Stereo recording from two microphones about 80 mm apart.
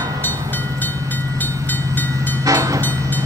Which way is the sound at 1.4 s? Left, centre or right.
Left.